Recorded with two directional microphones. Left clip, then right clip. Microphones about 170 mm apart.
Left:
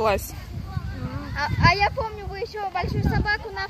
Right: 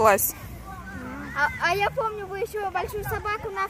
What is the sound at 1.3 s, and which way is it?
Speech, 70° right (ahead or behind).